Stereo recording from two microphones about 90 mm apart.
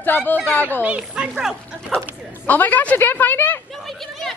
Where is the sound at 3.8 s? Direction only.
5° left (ahead or behind).